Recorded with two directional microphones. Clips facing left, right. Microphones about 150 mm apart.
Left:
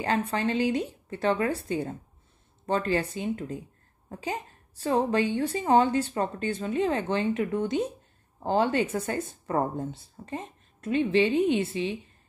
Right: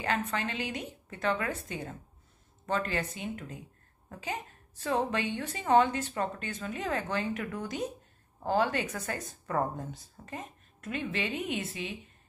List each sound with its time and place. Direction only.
0.0 s a woman's voice: 35° left (ahead or behind)